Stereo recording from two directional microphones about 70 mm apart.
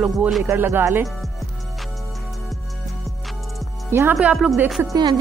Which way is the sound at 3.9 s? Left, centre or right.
Right.